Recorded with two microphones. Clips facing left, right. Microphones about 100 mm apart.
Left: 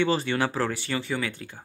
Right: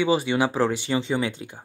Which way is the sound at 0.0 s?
15° right (ahead or behind).